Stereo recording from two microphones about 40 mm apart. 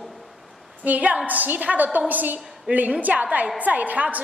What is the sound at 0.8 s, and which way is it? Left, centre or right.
A woman's voice, right.